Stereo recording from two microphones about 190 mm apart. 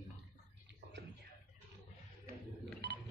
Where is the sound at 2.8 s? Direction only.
60° right (ahead or behind).